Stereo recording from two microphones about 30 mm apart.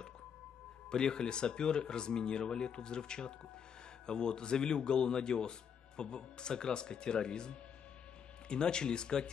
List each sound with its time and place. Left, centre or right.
0.8 s speech: left